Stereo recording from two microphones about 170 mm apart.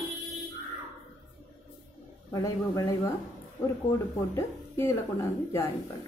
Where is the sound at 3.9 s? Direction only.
15° left (ahead or behind).